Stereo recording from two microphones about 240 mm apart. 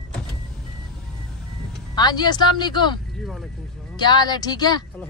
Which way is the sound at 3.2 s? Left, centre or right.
Centre.